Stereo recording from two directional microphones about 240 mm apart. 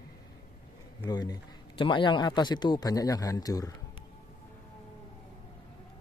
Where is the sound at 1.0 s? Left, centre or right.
Centre.